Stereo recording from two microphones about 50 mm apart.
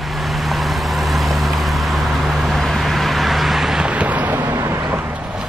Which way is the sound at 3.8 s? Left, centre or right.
Right.